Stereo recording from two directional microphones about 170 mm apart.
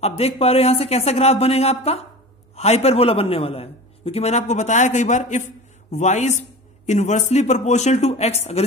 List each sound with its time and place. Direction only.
0.0 s a man's voice: 35° left (ahead or behind)